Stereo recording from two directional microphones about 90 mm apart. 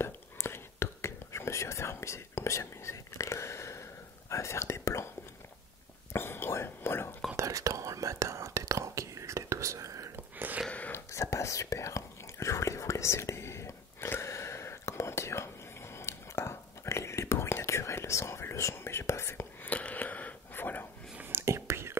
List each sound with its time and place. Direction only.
0.0 s whispering: 30° left (ahead or behind)
4.3 s speech: 35° left (ahead or behind)
6.1 s whispering: 25° left (ahead or behind)
7.3 s whispering: 40° right (ahead or behind)
10.1 s a sound: 20° right (ahead or behind)
10.7 s whispering: 15° left (ahead or behind)
11.1 s whispering: 35° left (ahead or behind)
21.2 s whispering: 25° right (ahead or behind)